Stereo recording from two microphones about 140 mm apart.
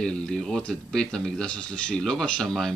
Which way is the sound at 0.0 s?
5° left (ahead or behind).